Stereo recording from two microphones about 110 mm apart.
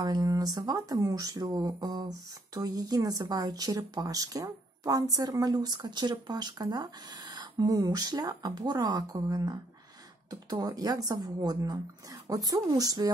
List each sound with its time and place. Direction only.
0.0 s speech: 35° right (ahead or behind)